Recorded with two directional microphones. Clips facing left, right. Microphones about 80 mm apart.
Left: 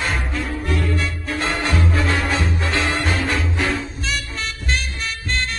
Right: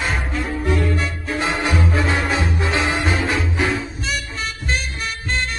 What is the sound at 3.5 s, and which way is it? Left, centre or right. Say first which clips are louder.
Swing music: right 1 dB; centre.